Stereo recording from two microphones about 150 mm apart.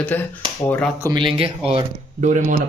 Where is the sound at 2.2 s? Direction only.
55° right (ahead or behind).